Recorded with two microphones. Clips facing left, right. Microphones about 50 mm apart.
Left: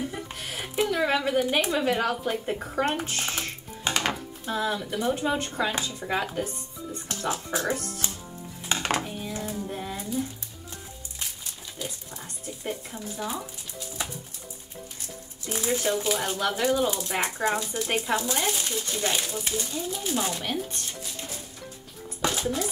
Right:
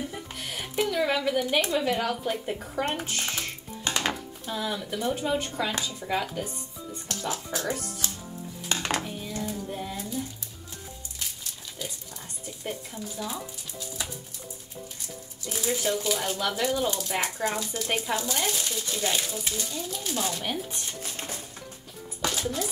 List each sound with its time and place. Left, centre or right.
0.1 s a sound: centre
0.8 s speech: centre
2.5 s speech: centre
2.9 s speech: centre
3.8 s a sound: centre
5.6 s speech: centre
8.0 s chopping: left
8.6 s a sound: centre
11.8 s speech: centre
15.5 s speech: centre
17.8 s speech: centre
20.4 s speech: centre
21.0 s music: right
22.2 s music: centre